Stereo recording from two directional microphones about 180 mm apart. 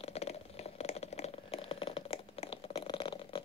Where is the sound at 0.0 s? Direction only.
35° left (ahead or behind).